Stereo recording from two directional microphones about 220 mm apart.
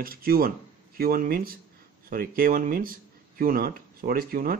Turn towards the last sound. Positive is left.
turn(degrees=-40)  # may be behind; listen again after turning